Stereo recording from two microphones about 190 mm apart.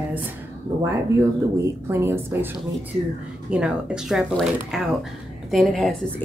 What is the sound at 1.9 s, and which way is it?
Speech, 10° right (ahead or behind).